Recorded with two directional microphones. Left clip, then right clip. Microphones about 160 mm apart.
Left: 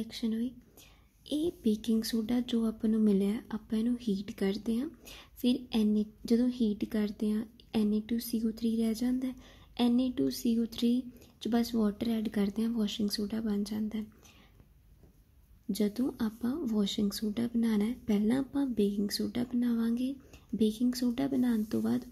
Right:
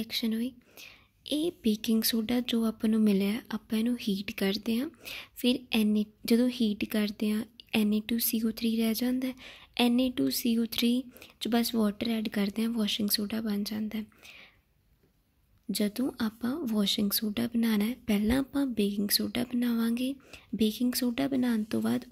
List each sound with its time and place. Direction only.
0.0 s speech: 15° right (ahead or behind)
15.7 s speech: 15° right (ahead or behind)